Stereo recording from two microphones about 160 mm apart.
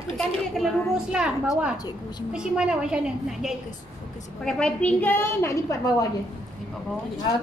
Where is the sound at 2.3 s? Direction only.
5° right (ahead or behind); by 6.0 s 20° left (ahead or behind).